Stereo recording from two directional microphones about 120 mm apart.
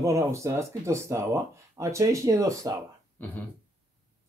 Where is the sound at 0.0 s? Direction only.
25° right (ahead or behind).